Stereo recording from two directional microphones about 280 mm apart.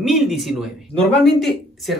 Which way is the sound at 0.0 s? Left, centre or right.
Centre.